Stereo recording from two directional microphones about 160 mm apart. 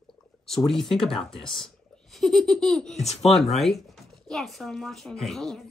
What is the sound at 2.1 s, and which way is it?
Speech, centre (ahead or behind).